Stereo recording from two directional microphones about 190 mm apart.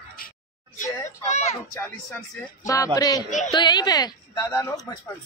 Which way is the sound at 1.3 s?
35° left (ahead or behind).